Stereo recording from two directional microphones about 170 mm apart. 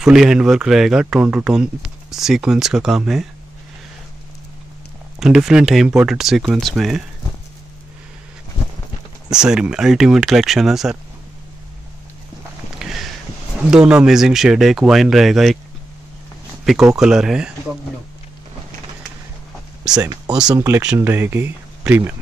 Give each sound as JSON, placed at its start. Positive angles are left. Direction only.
{"t": 0.0, "sound": "speech", "side_deg": -5}
{"t": 5.2, "sound": "speech", "side_deg": 0}
{"t": 9.3, "sound": "speech", "side_deg": -5}
{"t": 12.7, "sound": "a sound", "side_deg": 0}
{"t": 13.7, "sound": "speech", "side_deg": -5}
{"t": 16.9, "sound": "speech", "side_deg": -5}
{"t": 19.9, "sound": "speech", "side_deg": -25}